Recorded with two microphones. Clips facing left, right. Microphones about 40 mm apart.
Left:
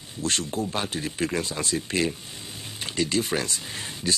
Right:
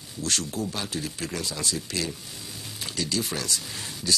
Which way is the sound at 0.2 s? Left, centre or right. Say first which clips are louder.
Left 2 dB; left.